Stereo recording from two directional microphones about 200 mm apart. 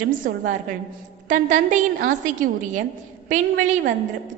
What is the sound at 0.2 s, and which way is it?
A woman's voice, 40° right (ahead or behind).